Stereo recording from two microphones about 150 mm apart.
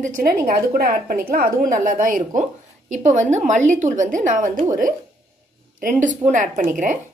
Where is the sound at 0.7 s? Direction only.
90° right; by 2.4 s 65° right (ahead or behind).